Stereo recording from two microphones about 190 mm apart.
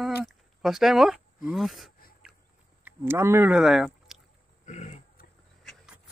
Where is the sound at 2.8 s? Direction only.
10° right (ahead or behind).